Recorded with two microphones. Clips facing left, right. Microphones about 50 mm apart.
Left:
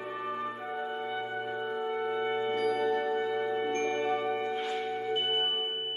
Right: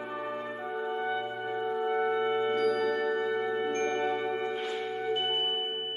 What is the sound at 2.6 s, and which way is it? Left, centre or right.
Music, centre.